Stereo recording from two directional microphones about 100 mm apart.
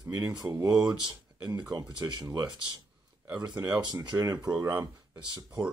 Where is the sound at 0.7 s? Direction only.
10° right (ahead or behind).